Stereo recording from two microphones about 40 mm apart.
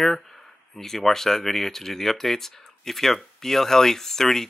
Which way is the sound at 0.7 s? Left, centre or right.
Centre.